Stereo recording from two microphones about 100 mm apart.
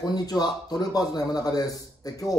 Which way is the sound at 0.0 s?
40° left (ahead or behind).